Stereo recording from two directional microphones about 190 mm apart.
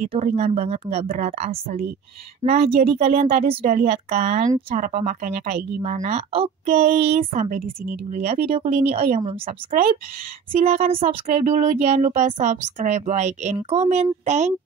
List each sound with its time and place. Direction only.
0.1 s a child's voice: 35° right (ahead or behind)
4.7 s a child's voice: 45° right (ahead or behind)
7.2 s a woman's voice: 45° right (ahead or behind)
8.7 s a child's voice: 30° right (ahead or behind)